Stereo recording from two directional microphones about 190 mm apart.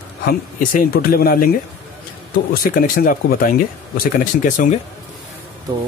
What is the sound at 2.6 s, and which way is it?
Speech, 45° left (ahead or behind).